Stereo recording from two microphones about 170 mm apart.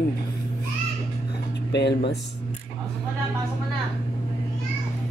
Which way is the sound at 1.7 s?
90° left.